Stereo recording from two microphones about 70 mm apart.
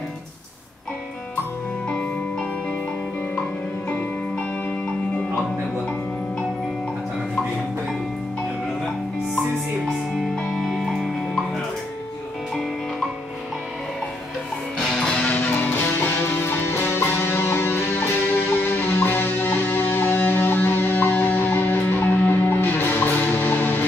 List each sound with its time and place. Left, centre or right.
9.8 s music: centre
14.8 s music: centre
15.2 s music: left